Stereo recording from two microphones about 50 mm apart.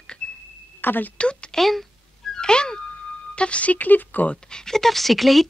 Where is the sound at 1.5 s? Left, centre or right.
Centre.